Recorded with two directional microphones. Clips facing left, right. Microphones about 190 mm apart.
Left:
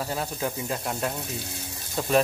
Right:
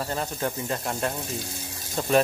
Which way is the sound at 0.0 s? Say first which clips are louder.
Right 1 dB; 5° left (ahead or behind).